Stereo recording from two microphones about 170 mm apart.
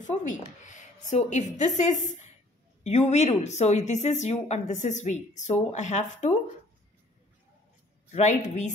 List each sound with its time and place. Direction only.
0.7 s a woman's voice: 45° left (ahead or behind)
8.1 s a woman's voice: 45° left (ahead or behind)